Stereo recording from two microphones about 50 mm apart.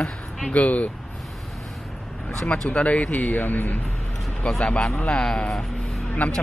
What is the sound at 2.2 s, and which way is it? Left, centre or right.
Speech, centre.